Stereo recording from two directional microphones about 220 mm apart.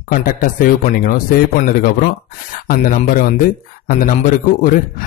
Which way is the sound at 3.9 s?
40° left (ahead or behind).